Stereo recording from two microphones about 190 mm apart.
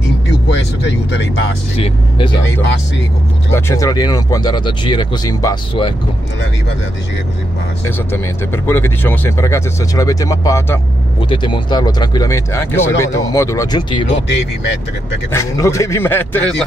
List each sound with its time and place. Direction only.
0.5 s speech: 70° left (ahead or behind)
1.8 s speech: 25° left (ahead or behind)
3.5 s speech: 15° left (ahead or behind)
8.6 s speech: 10° left (ahead or behind)
15.3 s speech: 15° left (ahead or behind)